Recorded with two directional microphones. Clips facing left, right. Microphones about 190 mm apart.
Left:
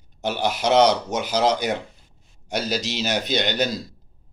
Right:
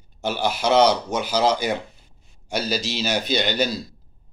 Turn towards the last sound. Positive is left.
turn(degrees=20)  # may be behind; listen again after turning